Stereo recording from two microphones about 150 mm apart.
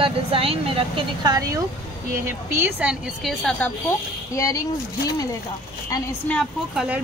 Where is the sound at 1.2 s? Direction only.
25° right (ahead or behind).